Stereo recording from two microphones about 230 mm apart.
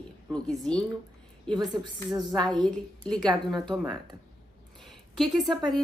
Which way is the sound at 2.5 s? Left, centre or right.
Centre.